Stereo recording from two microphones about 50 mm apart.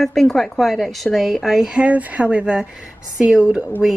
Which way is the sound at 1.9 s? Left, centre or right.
Right.